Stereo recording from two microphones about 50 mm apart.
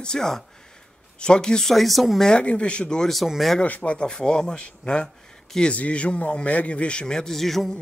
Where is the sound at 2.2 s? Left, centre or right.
Left.